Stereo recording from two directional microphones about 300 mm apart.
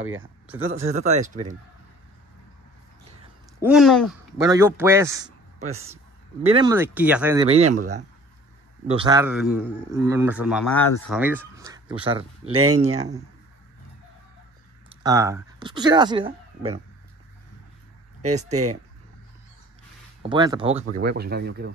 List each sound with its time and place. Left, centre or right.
0.0 s speech: right
0.8 s speech: right
3.5 s speech: centre
4.4 s a man's voice: centre
6.4 s a man's voice: centre
7.4 s a man's voice: right
15.0 s speech: centre
18.5 s speech: right
20.2 s a man's voice: centre
20.9 s speech: right